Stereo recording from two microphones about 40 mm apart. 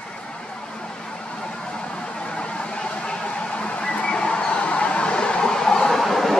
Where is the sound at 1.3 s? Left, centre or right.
Left; by 6.3 s centre.